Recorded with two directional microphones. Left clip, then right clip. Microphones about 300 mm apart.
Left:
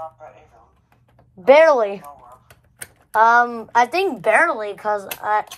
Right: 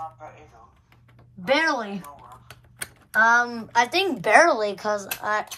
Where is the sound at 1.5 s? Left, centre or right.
Centre.